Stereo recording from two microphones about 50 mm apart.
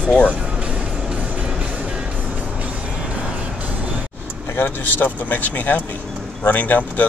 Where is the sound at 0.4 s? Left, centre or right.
Right.